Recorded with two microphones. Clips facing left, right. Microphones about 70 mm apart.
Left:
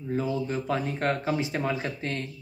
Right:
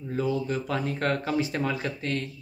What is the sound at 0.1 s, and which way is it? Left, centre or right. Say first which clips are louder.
Speech: right 1 dB; left.